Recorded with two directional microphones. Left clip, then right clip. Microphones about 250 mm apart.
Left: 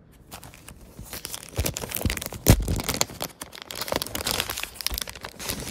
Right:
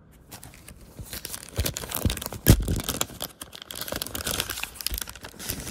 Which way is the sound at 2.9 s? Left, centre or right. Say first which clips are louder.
Left 4 dB; left.